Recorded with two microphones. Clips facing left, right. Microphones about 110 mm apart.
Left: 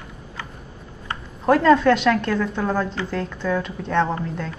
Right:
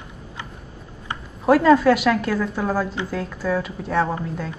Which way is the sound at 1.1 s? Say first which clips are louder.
Right 1 dB; 5° right (ahead or behind).